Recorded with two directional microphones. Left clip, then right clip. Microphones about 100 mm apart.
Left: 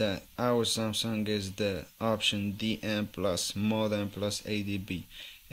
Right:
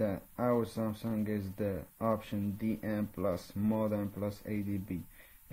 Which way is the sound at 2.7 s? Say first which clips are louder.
Left 4 dB; 80° left.